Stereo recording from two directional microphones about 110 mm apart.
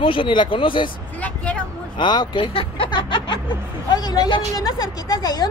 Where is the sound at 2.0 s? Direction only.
45° left (ahead or behind).